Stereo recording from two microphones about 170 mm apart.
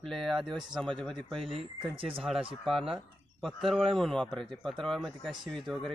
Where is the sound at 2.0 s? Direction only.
35° right (ahead or behind).